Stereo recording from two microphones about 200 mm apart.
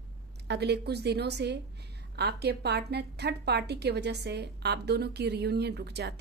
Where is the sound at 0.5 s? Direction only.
55° right (ahead or behind).